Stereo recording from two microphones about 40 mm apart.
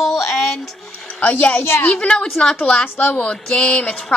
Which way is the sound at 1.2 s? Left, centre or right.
Left.